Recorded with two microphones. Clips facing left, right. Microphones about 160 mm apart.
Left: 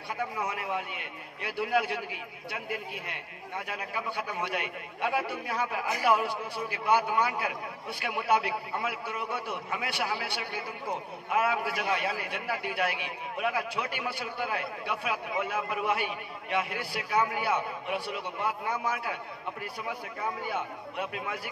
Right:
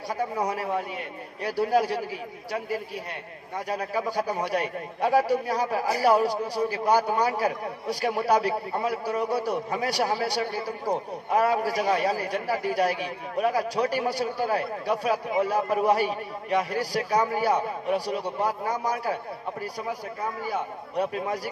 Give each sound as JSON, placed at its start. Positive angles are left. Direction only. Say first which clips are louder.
{"t": 0.2, "sound": "a man's voice", "louder": "right 6 dB", "side_deg": -40}
{"t": 20.4, "sound": "a man's voice", "louder": "right 4 dB", "side_deg": -40}